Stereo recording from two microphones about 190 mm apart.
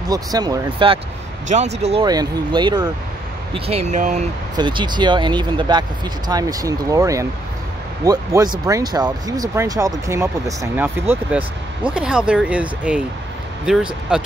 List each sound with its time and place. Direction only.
0.1 s speech: 20° right (ahead or behind)
1.5 s speech: 35° right (ahead or behind)
2.0 s speech: 20° right (ahead or behind); by 4.2 s 40° right (ahead or behind)
4.6 s speech: 25° right (ahead or behind); by 14.2 s 5° right (ahead or behind)